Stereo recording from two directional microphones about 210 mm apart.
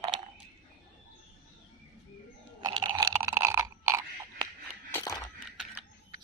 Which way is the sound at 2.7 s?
25° right (ahead or behind).